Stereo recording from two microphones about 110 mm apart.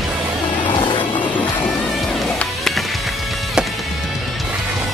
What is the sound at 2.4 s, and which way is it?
Music, 5° left (ahead or behind).